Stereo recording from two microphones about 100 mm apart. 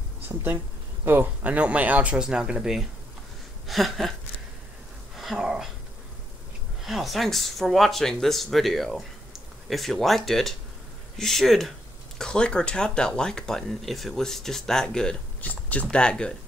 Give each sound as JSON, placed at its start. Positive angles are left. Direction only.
{"t": 0.3, "sound": "speech", "side_deg": -20}
{"t": 5.1, "sound": "speech", "side_deg": -5}
{"t": 6.8, "sound": "speech", "side_deg": 0}